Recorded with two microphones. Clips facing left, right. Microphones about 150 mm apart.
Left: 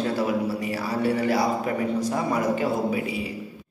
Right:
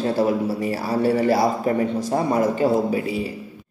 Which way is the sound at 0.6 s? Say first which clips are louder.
Right 4 dB; 35° right (ahead or behind).